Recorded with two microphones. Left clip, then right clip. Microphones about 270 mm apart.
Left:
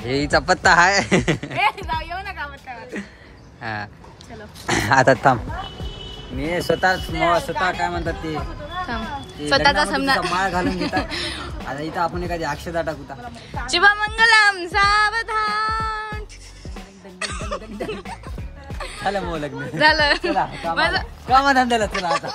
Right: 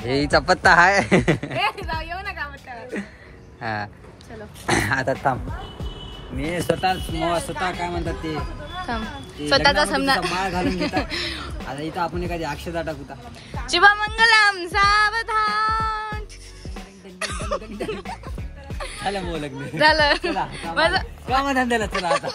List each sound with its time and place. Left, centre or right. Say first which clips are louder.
0.0 s speech: even; centre
3.6 s a woman's voice: right 1 dB; centre
5.0 s speech: left 7 dB; left
6.9 s speech: left 4 dB; centre
7.7 s a woman's voice: left 3 dB; centre
8.2 s speech: left 1 dB; left
8.8 s speech: right 2 dB; centre
17.2 s music: right 1 dB; centre
19.7 s a woman's voice: left 1 dB; centre